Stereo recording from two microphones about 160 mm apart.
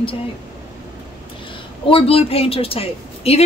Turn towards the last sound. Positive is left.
turn(degrees=35)  # may be behind; listen again after turning